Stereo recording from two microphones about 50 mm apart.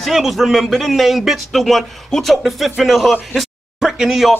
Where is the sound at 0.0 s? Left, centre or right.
Centre.